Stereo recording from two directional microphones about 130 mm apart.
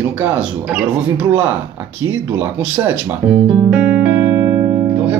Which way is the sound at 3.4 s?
5° right (ahead or behind).